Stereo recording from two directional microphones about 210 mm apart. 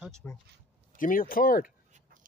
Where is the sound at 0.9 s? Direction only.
40° left (ahead or behind).